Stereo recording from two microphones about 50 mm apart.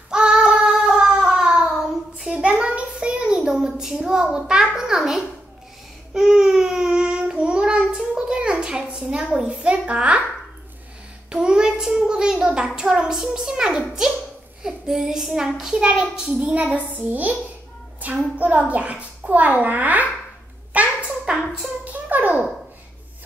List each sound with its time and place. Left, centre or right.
0.1 s child singing: centre
2.3 s child singing: right
9.5 s a child's voice: right
11.2 s a child's voice: centre
14.9 s child singing: centre
15.8 s a child's voice: centre
20.7 s a sound: right